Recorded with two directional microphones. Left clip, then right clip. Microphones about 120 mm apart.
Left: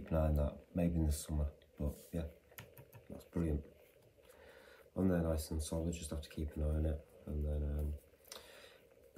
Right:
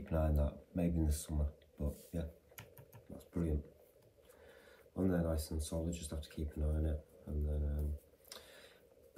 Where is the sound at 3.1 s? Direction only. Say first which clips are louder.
Left 1 dB; 55° left (ahead or behind).